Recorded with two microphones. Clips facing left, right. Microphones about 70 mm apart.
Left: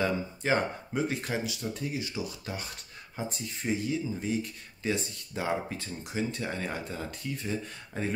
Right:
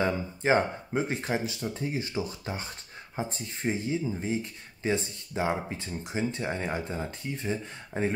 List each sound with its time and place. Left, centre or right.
0.0 s speech: right